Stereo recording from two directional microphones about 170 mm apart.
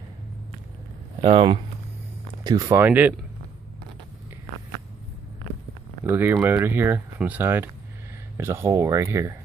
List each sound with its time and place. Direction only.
1.2 s speech: 30° right (ahead or behind); by 3.2 s 10° right (ahead or behind)
6.0 s speech: 10° right (ahead or behind)